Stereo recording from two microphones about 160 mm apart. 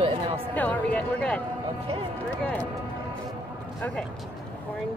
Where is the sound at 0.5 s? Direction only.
10° left (ahead or behind).